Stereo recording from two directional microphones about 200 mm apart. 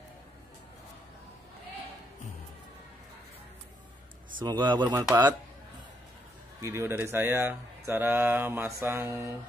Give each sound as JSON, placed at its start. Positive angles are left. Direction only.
{"t": 4.4, "sound": "speech", "side_deg": -20}
{"t": 6.6, "sound": "speech", "side_deg": -15}